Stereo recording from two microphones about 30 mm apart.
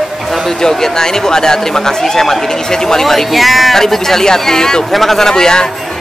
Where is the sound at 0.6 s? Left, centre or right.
Centre.